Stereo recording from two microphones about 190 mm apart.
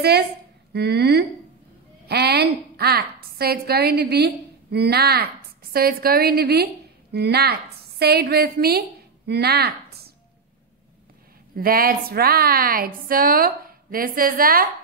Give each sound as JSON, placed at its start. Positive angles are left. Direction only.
{"t": 0.7, "sound": "a woman's voice", "side_deg": -60}
{"t": 11.5, "sound": "a woman's voice", "side_deg": -50}